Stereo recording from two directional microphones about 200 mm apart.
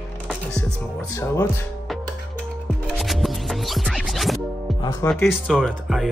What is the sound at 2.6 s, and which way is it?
Music, centre (ahead or behind).